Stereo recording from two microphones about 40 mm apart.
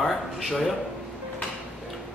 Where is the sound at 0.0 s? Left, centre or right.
Centre.